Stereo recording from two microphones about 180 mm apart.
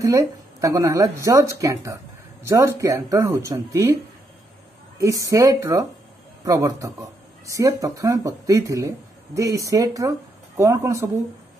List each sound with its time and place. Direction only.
0.0 s speech: 20° right (ahead or behind)
4.9 s speech: 20° right (ahead or behind)